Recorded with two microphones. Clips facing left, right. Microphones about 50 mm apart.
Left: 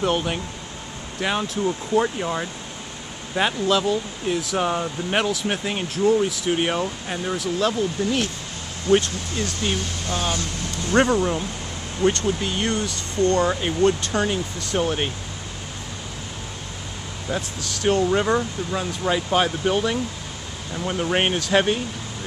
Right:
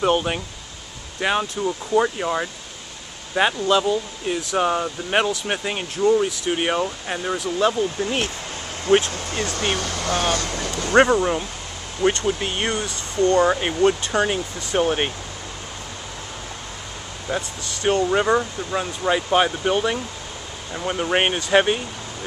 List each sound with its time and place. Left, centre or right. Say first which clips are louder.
0.0 s speech: right 3 dB; centre
8.9 s speech: right 1 dB; right
9.5 s speech: right 2 dB; right
10.9 s speech: right 3 dB; right
11.1 s speech: right 1 dB; centre
17.3 s speech: right 1 dB; centre